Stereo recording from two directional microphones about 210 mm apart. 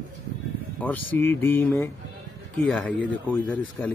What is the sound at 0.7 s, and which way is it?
A man's voice, 10° left (ahead or behind).